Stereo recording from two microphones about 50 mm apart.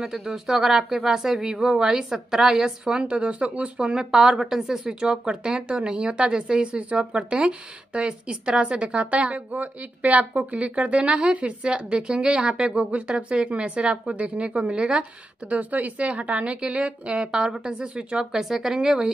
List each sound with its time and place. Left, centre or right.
0.0 s speech: centre
18.4 s speech: centre